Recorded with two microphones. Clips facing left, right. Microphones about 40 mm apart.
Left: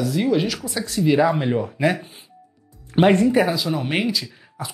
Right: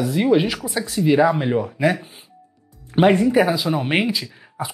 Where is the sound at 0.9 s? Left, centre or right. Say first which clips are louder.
Right 1 dB; centre.